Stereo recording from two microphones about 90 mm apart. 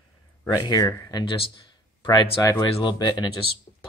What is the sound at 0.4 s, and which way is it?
Speech, 45° left (ahead or behind).